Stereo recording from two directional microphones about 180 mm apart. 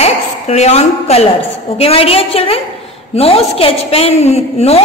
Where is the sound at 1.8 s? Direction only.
35° left (ahead or behind).